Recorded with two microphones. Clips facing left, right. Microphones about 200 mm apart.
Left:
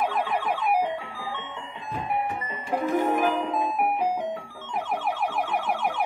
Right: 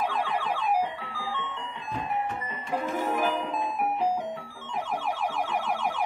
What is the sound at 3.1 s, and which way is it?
Music, 60° left (ahead or behind).